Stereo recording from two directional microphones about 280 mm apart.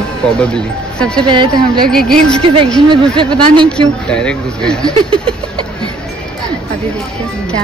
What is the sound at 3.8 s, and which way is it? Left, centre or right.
Speech, centre.